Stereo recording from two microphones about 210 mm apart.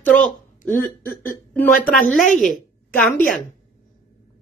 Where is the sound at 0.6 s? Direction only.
40° left (ahead or behind).